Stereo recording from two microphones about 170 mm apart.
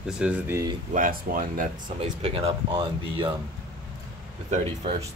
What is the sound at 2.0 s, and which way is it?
Speech, 40° right (ahead or behind).